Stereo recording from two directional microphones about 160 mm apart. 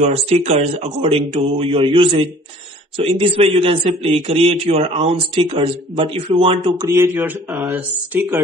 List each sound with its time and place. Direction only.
0.0 s a man's voice: 40° right (ahead or behind)
6.8 s speech: 15° right (ahead or behind)